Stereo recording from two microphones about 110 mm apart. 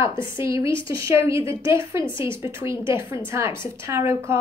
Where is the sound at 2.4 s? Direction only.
20° right (ahead or behind).